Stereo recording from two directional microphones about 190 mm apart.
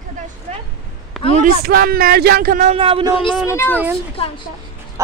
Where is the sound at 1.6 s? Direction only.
55° right (ahead or behind); by 3.1 s 30° right (ahead or behind).